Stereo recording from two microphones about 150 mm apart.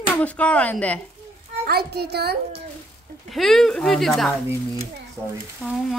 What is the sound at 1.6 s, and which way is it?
Speech, 90° right.